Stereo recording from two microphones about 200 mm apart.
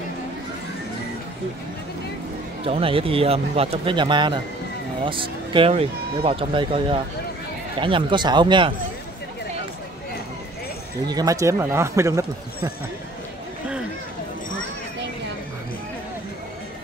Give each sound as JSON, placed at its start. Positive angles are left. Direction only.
{"t": 2.6, "sound": "speech", "side_deg": -30}
{"t": 11.1, "sound": "speech", "side_deg": -20}